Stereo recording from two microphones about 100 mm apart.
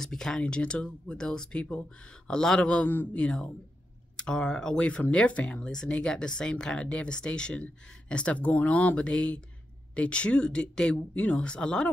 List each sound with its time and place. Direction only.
0.0 s speech: 5° left (ahead or behind)